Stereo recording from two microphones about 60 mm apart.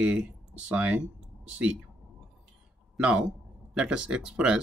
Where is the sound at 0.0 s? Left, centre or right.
Centre.